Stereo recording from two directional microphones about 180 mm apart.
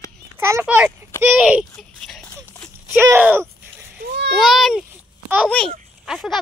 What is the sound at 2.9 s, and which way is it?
Speech, 10° right (ahead or behind).